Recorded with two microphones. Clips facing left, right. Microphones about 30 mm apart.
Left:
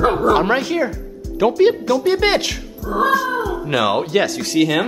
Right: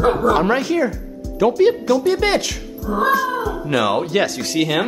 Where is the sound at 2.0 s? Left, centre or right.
Centre.